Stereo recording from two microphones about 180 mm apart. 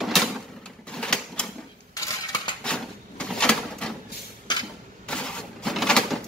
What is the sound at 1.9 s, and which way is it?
Coin, 25° left (ahead or behind).